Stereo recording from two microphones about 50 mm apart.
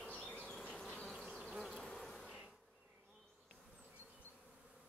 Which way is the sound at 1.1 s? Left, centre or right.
Centre.